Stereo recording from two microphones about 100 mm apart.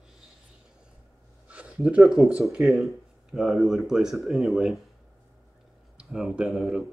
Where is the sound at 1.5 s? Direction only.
15° right (ahead or behind).